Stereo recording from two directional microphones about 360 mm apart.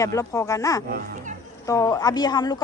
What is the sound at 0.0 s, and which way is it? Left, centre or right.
Speech, centre.